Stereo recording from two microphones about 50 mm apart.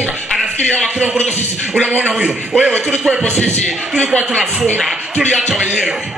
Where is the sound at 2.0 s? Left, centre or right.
Right.